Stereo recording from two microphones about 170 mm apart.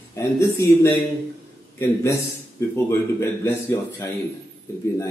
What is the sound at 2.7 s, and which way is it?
Speech, 15° left (ahead or behind).